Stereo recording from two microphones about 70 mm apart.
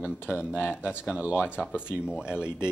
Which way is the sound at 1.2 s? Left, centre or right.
Left.